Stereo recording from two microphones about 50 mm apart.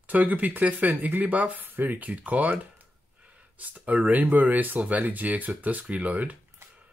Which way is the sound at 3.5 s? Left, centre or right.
Right.